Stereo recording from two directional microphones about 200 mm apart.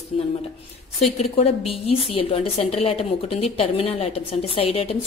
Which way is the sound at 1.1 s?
30° left (ahead or behind).